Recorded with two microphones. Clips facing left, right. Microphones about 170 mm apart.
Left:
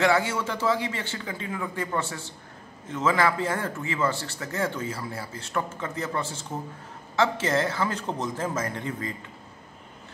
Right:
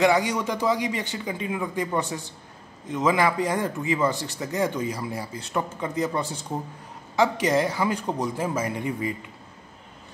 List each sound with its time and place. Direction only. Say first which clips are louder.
0.0 s a man's voice: right 2 dB; 15° right (ahead or behind)